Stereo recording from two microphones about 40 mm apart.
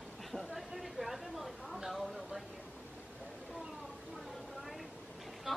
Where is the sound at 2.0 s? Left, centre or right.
Centre.